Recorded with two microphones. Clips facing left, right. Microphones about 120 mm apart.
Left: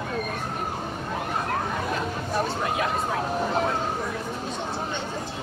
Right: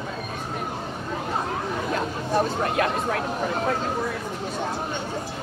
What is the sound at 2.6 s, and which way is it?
Speech, 60° right (ahead or behind).